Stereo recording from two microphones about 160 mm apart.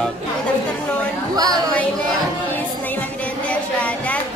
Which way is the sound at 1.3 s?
25° right (ahead or behind).